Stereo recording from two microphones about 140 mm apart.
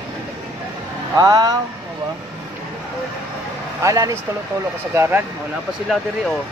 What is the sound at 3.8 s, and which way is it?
Speech, 25° right (ahead or behind).